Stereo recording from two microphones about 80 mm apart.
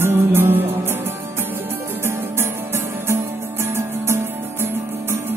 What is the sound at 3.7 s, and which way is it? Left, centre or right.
Music, right.